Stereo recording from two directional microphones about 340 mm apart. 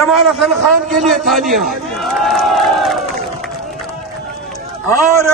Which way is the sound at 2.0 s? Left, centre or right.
Centre.